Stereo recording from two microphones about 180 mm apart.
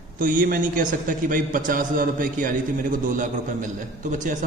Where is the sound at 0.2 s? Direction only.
50° right (ahead or behind).